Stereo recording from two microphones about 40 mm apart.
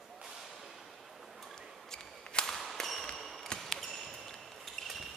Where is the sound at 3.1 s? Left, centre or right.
Centre.